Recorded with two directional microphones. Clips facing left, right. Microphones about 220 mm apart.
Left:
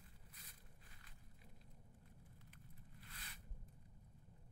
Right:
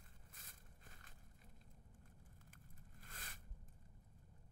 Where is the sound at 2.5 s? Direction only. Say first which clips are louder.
Left 1 dB; 45° right (ahead or behind).